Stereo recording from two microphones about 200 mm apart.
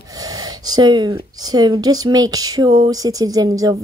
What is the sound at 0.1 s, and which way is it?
Speech, 20° right (ahead or behind).